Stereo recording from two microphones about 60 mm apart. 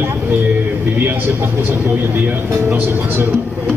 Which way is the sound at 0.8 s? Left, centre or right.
Right.